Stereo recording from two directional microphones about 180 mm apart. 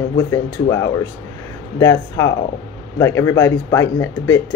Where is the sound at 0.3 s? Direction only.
15° left (ahead or behind).